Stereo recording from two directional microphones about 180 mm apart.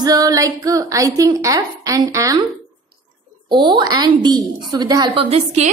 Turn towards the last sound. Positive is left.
turn(degrees=-35)  # may be behind; listen again after turning